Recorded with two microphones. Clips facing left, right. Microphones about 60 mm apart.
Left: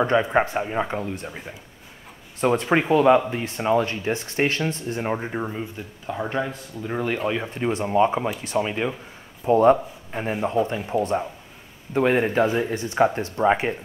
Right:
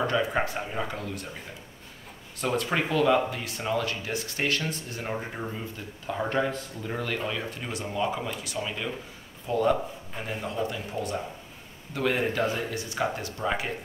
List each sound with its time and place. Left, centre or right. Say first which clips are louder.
0.0 s speech: left 6 dB; left
2.4 s speech: left 7 dB; left
6.0 s speech: left 1 dB; centre; by 13.7 s left